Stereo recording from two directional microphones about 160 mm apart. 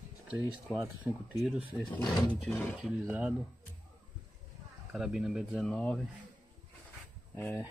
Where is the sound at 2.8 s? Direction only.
5° right (ahead or behind).